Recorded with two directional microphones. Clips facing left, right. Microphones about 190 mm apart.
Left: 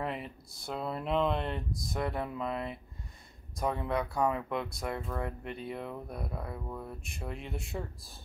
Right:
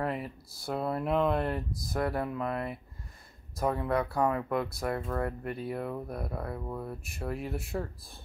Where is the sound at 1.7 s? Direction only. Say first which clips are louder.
Left 1 dB; 60° right (ahead or behind).